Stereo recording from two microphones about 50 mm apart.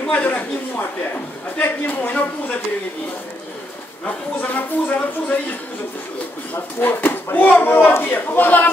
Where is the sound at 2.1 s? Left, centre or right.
Left.